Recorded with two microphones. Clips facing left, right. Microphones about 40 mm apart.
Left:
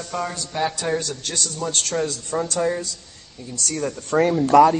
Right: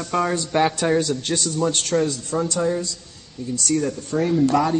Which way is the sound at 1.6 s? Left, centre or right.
Centre.